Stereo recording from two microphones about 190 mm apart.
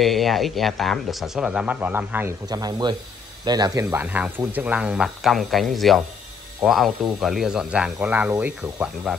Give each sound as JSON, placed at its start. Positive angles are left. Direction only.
{"t": 0.0, "sound": "speech", "side_deg": 0}
{"t": 3.8, "sound": "speech", "side_deg": -10}